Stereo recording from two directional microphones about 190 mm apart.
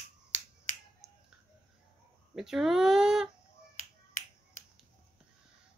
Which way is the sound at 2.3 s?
Centre (ahead or behind).